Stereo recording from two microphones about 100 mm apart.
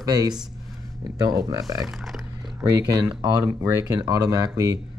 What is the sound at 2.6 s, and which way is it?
Speech, 40° right (ahead or behind).